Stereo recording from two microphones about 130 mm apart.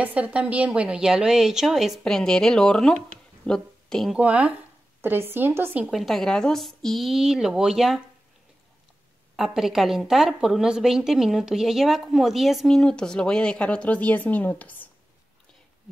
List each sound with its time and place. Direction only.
0.0 s a woman's voice: 10° right (ahead or behind)
4.2 s speech: 10° right (ahead or behind)
5.9 s a woman's voice: centre (ahead or behind)
9.4 s a woman's voice: 5° right (ahead or behind); by 14.9 s 15° left (ahead or behind)